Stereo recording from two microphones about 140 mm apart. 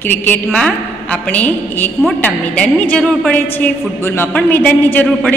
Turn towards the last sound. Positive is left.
turn(degrees=15)  # may be behind; listen again after turning